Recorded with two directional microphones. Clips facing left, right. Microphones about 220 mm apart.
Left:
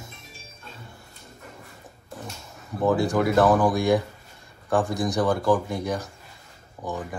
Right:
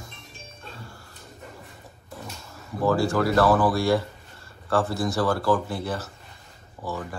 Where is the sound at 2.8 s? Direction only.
20° left (ahead or behind).